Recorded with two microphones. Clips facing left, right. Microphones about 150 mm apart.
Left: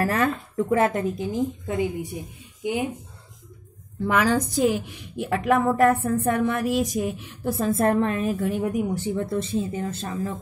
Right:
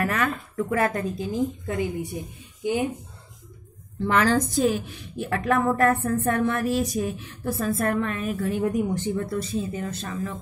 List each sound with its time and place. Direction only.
0.0 s a woman's voice: 30° left (ahead or behind)
4.1 s a woman's voice: 10° left (ahead or behind)
8.6 s a woman's voice: 10° left (ahead or behind)
9.2 s a woman's voice: 25° left (ahead or behind)